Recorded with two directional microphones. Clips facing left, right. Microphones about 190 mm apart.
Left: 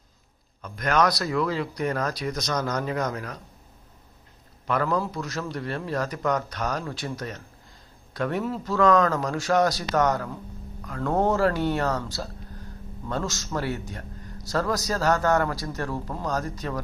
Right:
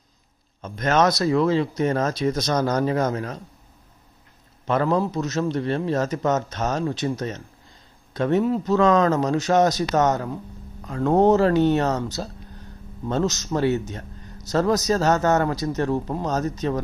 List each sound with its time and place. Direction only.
0.6 s speech: 25° right (ahead or behind)
4.6 s speech: 25° right (ahead or behind)